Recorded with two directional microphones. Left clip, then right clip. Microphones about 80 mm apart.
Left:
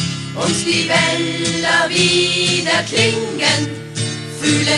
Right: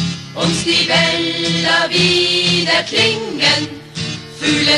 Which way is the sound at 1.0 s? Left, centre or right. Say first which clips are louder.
Right 2 dB; right.